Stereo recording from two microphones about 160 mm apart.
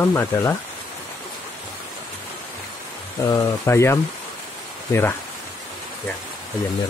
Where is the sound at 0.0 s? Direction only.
15° left (ahead or behind).